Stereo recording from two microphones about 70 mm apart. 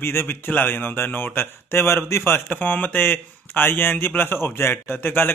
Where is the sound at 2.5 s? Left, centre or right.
Left.